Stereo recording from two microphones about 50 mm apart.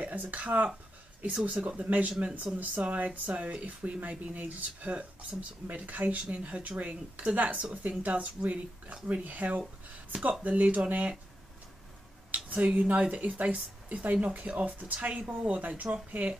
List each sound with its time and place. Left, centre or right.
0.0 s speech: right
12.3 s a sound: right
12.7 s speech: right